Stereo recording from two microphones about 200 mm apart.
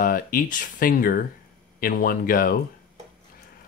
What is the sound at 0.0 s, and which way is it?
Speech, 45° left (ahead or behind).